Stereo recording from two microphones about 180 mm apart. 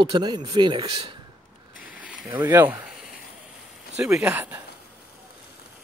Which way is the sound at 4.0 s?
10° right (ahead or behind).